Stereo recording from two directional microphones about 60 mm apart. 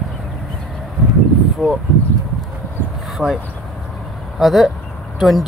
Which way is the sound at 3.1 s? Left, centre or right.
Centre.